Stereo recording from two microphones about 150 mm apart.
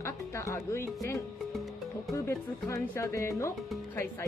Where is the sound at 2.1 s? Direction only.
20° left (ahead or behind).